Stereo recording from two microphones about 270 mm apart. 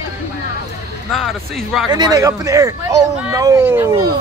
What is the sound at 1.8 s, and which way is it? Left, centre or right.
Speech, centre.